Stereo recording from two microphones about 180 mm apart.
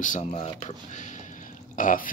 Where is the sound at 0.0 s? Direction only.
45° left (ahead or behind).